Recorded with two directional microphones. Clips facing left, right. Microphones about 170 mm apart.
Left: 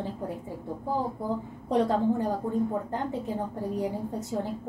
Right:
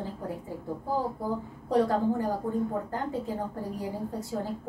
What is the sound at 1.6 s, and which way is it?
Speech, 20° left (ahead or behind).